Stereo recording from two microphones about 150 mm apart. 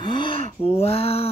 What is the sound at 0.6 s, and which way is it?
Speech, 40° left (ahead or behind).